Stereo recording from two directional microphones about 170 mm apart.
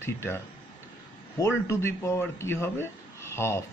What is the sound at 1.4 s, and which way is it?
Speech, 15° left (ahead or behind).